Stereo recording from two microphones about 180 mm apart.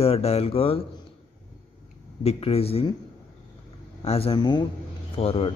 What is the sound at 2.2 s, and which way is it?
Speech, 35° left (ahead or behind).